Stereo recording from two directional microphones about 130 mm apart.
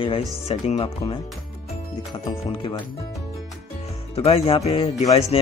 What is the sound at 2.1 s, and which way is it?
Speech, 40° left (ahead or behind).